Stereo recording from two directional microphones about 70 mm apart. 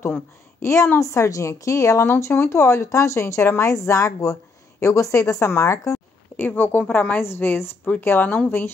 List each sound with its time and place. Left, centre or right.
0.0 s a woman's voice: left
5.5 s a sound: left
6.4 s a woman's voice: left